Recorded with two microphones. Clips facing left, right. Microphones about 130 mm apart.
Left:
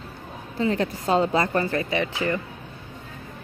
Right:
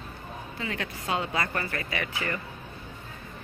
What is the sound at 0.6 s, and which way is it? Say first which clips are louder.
Speech: left 12 dB; 35° left (ahead or behind).